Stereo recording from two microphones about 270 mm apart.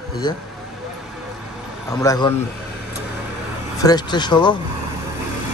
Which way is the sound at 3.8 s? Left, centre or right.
Centre.